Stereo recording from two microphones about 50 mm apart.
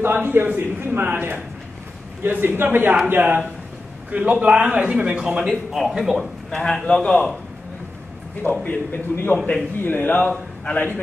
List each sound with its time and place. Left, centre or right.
0.0 s a man's voice: right
4.1 s a man's voice: right
5.4 s speech: centre
6.5 s a man's voice: centre
8.6 s a man's voice: left